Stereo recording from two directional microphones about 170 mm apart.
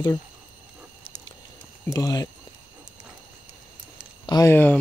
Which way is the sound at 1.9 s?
20° left (ahead or behind).